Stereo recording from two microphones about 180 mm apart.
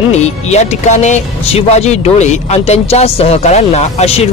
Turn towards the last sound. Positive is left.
turn(degrees=35)  # may be behind; listen again after turning